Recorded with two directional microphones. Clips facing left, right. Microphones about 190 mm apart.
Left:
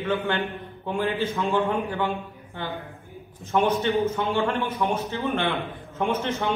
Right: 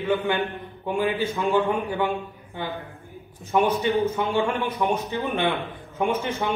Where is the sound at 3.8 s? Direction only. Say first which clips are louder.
Right 1 dB; 15° right (ahead or behind).